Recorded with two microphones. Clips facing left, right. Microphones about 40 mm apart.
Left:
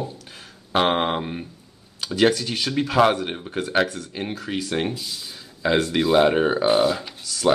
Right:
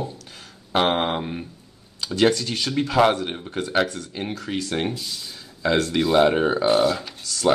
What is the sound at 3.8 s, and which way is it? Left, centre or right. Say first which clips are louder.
Speech: left 1 dB; left.